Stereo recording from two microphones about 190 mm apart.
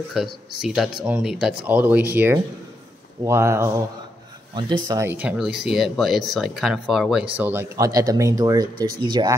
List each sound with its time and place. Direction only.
0.1 s speech: centre (ahead or behind)
4.8 s speech: 15° right (ahead or behind)